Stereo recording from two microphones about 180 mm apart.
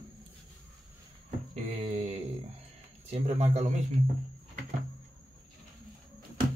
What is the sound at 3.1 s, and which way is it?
Speech, 35° right (ahead or behind).